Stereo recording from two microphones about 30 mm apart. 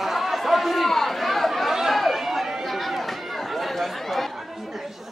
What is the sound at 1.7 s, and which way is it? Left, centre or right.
Chatter, centre.